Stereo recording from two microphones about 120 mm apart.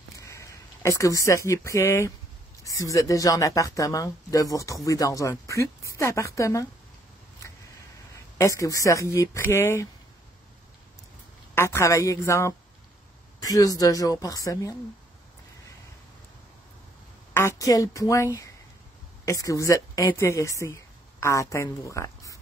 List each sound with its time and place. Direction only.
0.2 s speech: 25° left (ahead or behind)
8.1 s speech: 25° left (ahead or behind)
11.5 s speech: 25° left (ahead or behind)
17.3 s speech: 20° left (ahead or behind)